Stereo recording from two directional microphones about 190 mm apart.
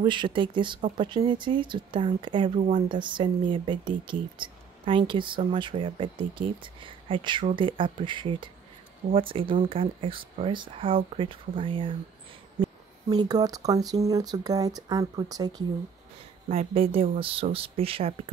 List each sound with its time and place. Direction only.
0.0 s speech: 25° right (ahead or behind)
13.1 s speech: 20° right (ahead or behind)
16.4 s speech: 30° right (ahead or behind)